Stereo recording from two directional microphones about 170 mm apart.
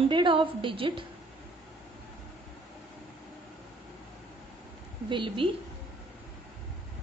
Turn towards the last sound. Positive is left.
turn(degrees=-30)  # may be behind; listen again after turning